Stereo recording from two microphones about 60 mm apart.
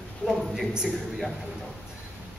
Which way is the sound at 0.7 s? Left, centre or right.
Centre.